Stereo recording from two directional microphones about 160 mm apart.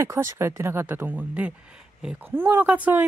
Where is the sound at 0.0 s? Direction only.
15° right (ahead or behind).